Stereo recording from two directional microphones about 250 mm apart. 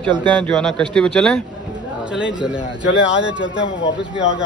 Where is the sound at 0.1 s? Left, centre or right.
Centre.